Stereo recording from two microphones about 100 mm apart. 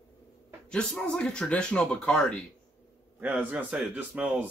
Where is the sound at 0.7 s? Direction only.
10° left (ahead or behind).